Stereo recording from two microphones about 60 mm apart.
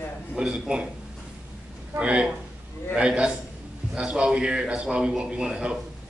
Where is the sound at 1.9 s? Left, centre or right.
Centre.